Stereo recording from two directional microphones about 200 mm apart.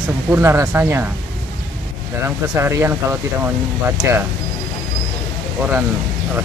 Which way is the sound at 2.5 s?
15° right (ahead or behind).